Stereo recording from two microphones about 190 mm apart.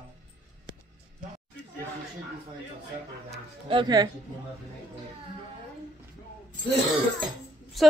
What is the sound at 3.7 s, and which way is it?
Speech, 25° right (ahead or behind).